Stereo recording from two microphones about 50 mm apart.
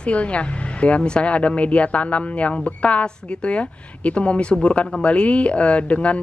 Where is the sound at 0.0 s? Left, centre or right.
Left.